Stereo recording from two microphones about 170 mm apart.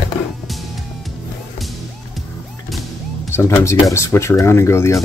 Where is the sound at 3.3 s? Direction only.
15° left (ahead or behind).